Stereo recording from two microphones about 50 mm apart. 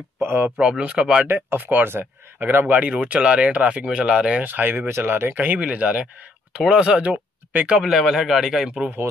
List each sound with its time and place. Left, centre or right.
0.2 s a sound: right
0.6 s speech: right
1.2 s speech: right
2.8 s speech: right
4.4 s speech: right
5.6 s speech: right
7.8 s a man's voice: centre